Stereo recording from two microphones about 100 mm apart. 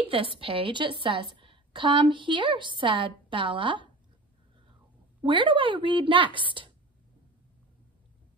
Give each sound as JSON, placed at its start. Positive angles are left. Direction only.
{"t": 0.0, "sound": "a sound", "side_deg": -65}
{"t": 0.4, "sound": "a woman's voice", "side_deg": -60}
{"t": 5.2, "sound": "a woman's voice", "side_deg": -55}